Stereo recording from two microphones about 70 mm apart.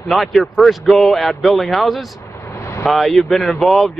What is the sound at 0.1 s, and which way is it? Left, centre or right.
Speech, centre.